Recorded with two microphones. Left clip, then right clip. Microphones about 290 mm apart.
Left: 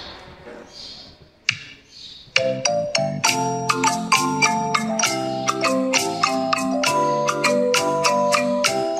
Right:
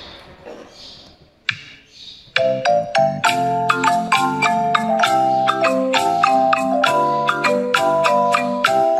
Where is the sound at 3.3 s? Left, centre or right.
Centre.